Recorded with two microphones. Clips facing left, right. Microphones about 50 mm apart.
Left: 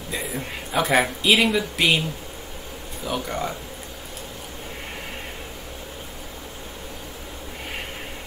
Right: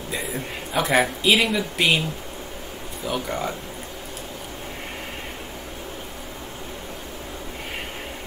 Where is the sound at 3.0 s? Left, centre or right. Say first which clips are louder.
Right 1 dB; centre.